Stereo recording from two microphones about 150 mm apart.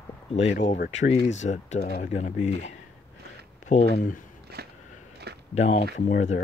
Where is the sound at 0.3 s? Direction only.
50° left (ahead or behind).